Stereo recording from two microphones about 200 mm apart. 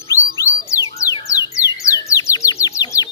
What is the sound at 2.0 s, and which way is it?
Bird, 15° left (ahead or behind).